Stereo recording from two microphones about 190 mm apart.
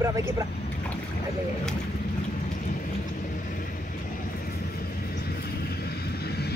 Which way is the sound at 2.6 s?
45° left (ahead or behind).